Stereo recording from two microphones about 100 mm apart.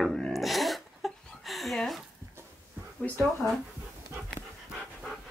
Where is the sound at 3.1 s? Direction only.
15° left (ahead or behind).